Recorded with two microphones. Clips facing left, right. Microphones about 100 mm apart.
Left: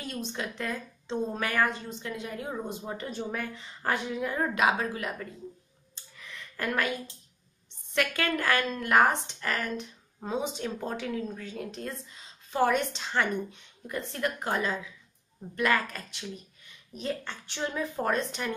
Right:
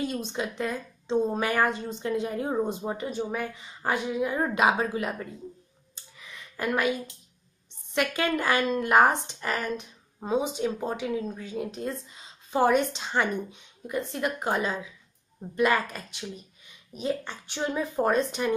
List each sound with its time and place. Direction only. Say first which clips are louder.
0.0 s a woman's voice: right 5 dB; 20° right (ahead or behind)
3.0 s speech: right 4 dB; 10° right (ahead or behind)
6.1 s a sound: right 1 dB; 10° right (ahead or behind)
8.1 s a woman's voice: right 3 dB; 20° right (ahead or behind)